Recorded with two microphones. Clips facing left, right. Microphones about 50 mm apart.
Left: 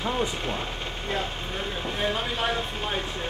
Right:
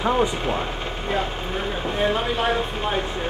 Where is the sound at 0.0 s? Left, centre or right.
Right.